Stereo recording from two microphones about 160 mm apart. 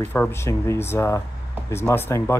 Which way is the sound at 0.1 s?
15° left (ahead or behind).